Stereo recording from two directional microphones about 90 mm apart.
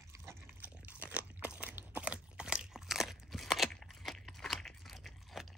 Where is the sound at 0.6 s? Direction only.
20° right (ahead or behind).